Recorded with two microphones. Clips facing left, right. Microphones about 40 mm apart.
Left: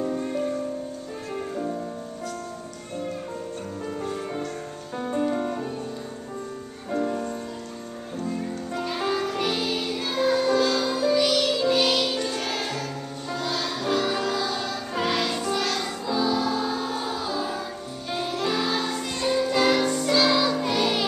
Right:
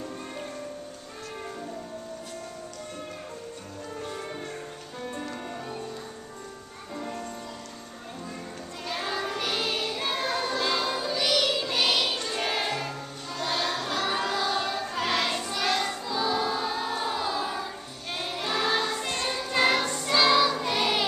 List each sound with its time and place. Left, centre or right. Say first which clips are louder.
7.0 s music: left 8 dB; left
8.7 s music: left 5 dB; centre
15.0 s music: left 3 dB; centre
18.1 s choir: left 4 dB; centre
19.1 s music: left 6 dB; centre
19.8 s music: left 3 dB; centre